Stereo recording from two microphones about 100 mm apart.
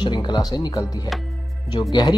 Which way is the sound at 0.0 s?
45° left (ahead or behind).